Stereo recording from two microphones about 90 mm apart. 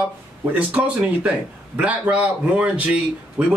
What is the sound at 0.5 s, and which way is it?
A man's voice, 15° right (ahead or behind).